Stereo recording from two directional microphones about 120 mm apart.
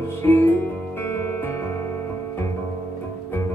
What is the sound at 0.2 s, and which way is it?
Music, 20° left (ahead or behind).